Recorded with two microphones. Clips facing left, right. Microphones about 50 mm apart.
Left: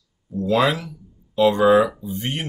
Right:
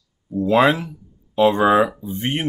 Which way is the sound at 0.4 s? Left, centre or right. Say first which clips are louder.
Right 3 dB; right.